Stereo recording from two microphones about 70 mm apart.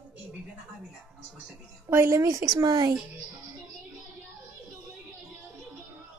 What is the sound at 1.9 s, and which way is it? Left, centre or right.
Speech, right.